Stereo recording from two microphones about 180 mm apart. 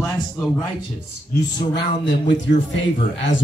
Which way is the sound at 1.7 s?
80° left.